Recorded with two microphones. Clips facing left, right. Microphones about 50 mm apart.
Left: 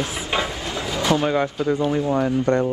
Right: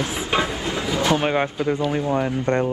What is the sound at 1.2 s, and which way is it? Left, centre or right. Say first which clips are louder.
Speech: even; right.